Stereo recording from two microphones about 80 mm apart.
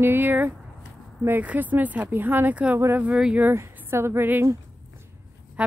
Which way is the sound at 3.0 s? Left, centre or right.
Centre.